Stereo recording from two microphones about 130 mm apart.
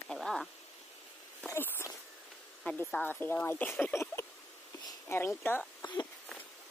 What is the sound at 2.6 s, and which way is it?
Speech, 10° left (ahead or behind).